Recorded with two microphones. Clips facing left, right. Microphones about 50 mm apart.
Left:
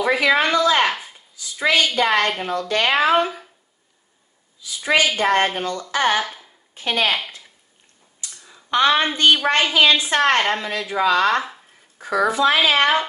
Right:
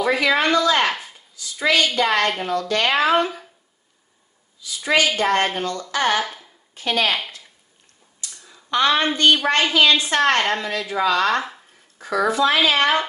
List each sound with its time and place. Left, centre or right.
0.0 s a woman's voice: centre
1.3 s a woman's voice: centre
3.1 s speech: centre
4.7 s a woman's voice: centre
8.6 s a woman's voice: left; by 11.6 s centre
12.0 s a woman's voice: centre